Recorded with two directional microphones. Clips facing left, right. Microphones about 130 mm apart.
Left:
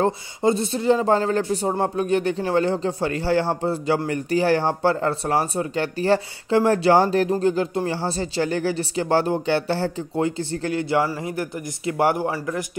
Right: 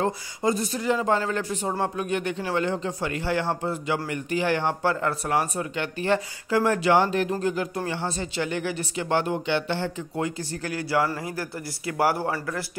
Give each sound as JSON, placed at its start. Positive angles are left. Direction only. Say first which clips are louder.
{"t": 0.0, "sound": "speech", "louder": "left 5 dB", "side_deg": 30}
{"t": 10.1, "sound": "speech", "louder": "left 7 dB", "side_deg": 30}